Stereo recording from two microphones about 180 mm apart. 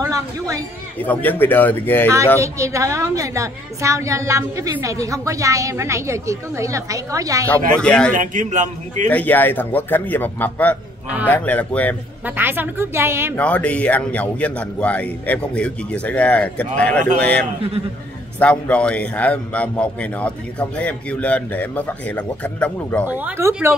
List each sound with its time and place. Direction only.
0.0 s speech: 20° right (ahead or behind)
0.9 s a man's voice: 10° left (ahead or behind)
2.4 s a woman's voice: 15° right (ahead or behind)
7.4 s speech: 10° left (ahead or behind)
8.1 s a man's voice: 45° right (ahead or behind)
9.1 s a man's voice: 10° left (ahead or behind)
12.3 s a woman's voice: 10° right (ahead or behind)
13.4 s a man's voice: 5° left (ahead or behind)
23.0 s a woman's voice: 10° right (ahead or behind)